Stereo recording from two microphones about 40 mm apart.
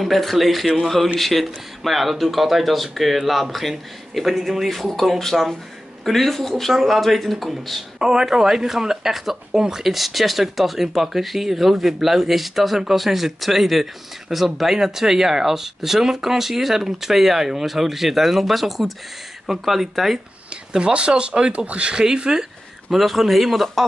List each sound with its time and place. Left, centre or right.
0.0 s speech: centre
8.0 s speech: centre
20.7 s speech: right
22.0 s a sound: centre
22.9 s speech: centre